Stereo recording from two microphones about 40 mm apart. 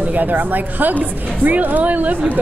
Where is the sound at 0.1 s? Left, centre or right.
Right.